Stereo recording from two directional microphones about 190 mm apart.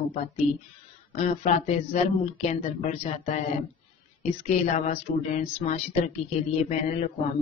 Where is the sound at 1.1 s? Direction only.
40° left (ahead or behind).